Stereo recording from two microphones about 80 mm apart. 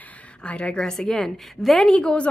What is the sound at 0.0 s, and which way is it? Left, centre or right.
A woman's voice, centre.